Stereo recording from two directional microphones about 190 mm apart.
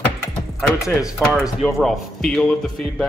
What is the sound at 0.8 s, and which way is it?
Speech, 15° left (ahead or behind).